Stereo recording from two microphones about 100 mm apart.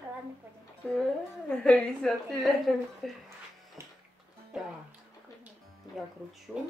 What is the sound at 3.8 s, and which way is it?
Music, 25° right (ahead or behind).